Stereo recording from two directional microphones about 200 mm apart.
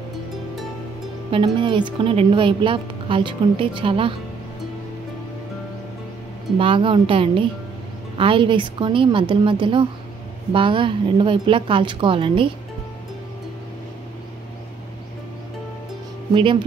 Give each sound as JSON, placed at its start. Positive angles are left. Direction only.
{"t": 1.3, "sound": "a woman's voice", "side_deg": -25}
{"t": 6.6, "sound": "a woman's voice", "side_deg": -25}
{"t": 16.3, "sound": "a woman's voice", "side_deg": -25}